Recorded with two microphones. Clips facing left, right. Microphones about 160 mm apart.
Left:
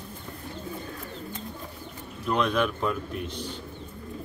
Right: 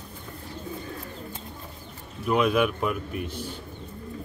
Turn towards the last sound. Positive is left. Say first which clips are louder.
# right 1 dB
turn(degrees=-10)  # may be behind; listen again after turning